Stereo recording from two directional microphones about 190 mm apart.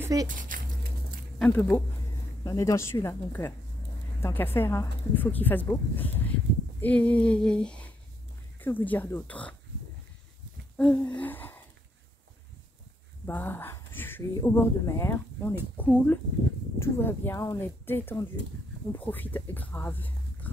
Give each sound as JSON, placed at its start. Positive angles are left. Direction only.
{"t": 0.0, "sound": "speech", "side_deg": -20}
{"t": 0.3, "sound": "speech", "side_deg": -45}
{"t": 1.4, "sound": "speech", "side_deg": 10}
{"t": 10.8, "sound": "speech", "side_deg": 5}
{"t": 13.2, "sound": "speech", "side_deg": 10}